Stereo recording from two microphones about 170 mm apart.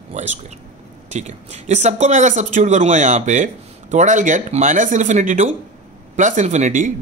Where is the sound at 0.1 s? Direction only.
45° right (ahead or behind).